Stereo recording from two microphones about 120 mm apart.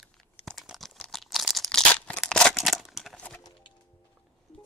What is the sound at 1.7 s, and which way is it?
Crunch, 5° left (ahead or behind).